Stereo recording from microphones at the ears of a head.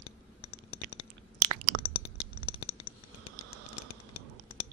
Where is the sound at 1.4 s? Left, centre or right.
Right.